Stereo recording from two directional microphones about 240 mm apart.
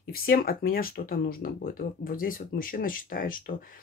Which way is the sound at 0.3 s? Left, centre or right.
Left.